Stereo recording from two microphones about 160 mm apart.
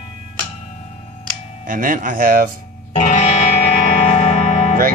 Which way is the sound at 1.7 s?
60° right (ahead or behind).